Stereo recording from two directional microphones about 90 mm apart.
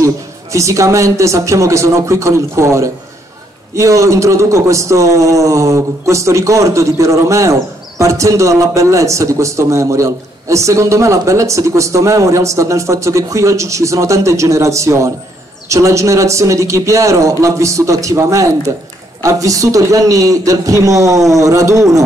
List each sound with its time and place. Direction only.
0.0 s a man's voice: 35° right (ahead or behind)